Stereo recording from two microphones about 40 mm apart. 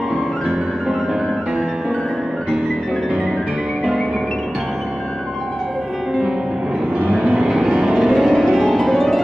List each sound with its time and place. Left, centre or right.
7.0 s vehicle: right
7.5 s music: right
7.8 s music: centre
8.6 s music: centre